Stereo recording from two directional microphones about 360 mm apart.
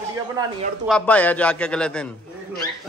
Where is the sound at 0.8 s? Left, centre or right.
Centre.